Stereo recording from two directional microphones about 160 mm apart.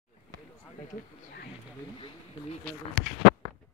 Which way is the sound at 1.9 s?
35° left (ahead or behind).